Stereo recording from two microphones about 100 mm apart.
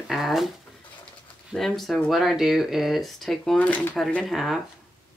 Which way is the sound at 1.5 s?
5° left (ahead or behind).